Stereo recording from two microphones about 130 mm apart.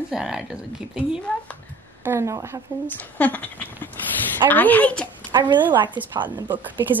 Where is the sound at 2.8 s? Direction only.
15° left (ahead or behind).